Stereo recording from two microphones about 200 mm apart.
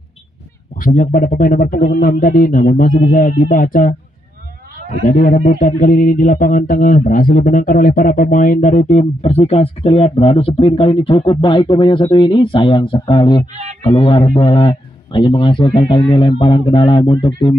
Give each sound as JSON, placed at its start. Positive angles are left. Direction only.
{"t": 0.7, "sound": "speech", "side_deg": 45}
{"t": 5.0, "sound": "a man's voice", "side_deg": 45}